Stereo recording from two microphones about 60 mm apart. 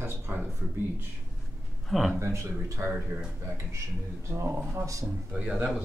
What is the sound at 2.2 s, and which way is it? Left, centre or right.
Speech, right.